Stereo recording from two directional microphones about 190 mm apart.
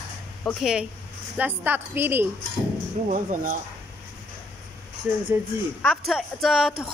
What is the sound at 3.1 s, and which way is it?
Speech, 40° right (ahead or behind).